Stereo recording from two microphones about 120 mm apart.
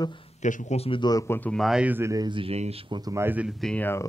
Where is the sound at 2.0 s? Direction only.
25° right (ahead or behind).